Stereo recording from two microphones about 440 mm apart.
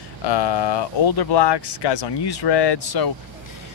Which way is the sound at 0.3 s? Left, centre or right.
Left.